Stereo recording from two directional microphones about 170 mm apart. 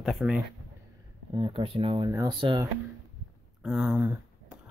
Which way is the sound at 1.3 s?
30° right (ahead or behind).